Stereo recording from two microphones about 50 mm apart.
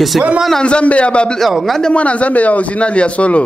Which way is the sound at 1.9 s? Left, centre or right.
Left.